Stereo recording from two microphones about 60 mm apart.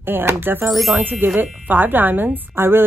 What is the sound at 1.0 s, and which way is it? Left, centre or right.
Speech, right.